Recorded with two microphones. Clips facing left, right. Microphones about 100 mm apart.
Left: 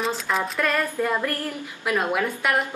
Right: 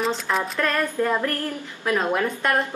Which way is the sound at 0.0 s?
Centre (ahead or behind).